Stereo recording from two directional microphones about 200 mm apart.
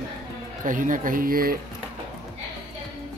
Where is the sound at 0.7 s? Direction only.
40° right (ahead or behind).